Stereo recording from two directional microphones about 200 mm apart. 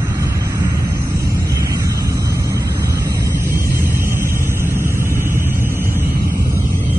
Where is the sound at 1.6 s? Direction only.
15° right (ahead or behind).